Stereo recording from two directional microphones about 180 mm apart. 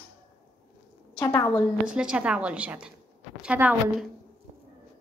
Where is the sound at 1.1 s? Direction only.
15° left (ahead or behind).